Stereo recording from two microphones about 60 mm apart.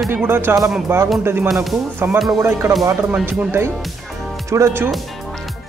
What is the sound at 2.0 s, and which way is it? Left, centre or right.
Speech, right.